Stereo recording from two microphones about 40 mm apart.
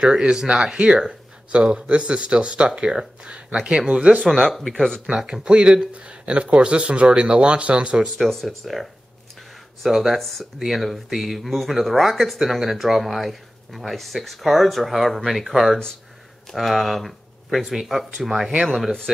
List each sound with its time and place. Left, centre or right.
0.0 s speech: centre
4.3 s speech: centre
4.7 s speech: centre
5.0 s speech: centre
8.3 s speech: centre
9.8 s speech: centre
10.1 s speech: centre
18.8 s speech: centre